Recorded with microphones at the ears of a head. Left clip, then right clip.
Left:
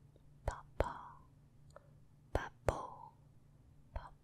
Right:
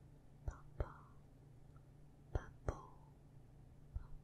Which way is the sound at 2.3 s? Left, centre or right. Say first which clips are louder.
Left 11 dB; left.